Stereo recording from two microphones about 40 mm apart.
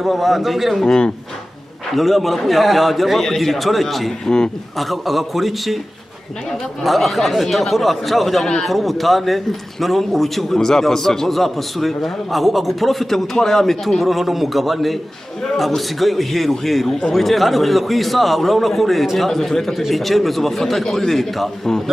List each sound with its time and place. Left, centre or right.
0.0 s a man's voice: centre
0.8 s speech: centre
2.0 s a man's voice: centre
6.8 s a man's voice: centre